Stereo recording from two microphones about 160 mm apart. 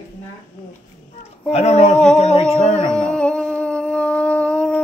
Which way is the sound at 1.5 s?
40° left (ahead or behind).